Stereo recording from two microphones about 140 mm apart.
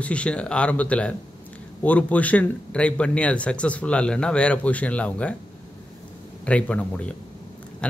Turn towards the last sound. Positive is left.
turn(degrees=10)  # may be behind; listen again after turning